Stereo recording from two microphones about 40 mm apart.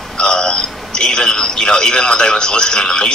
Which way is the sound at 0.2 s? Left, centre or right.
Centre.